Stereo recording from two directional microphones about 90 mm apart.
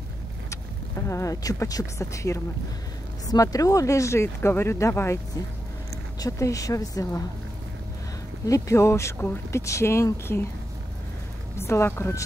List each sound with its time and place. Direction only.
1.0 s speech: 35° left (ahead or behind)
6.1 s speech: 40° left (ahead or behind)
8.5 s speech: 35° left (ahead or behind)
11.5 s speech: 30° left (ahead or behind)